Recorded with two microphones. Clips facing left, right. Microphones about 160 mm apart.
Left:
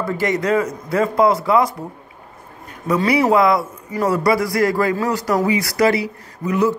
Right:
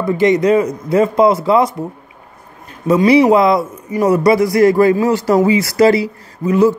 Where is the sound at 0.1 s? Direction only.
20° right (ahead or behind).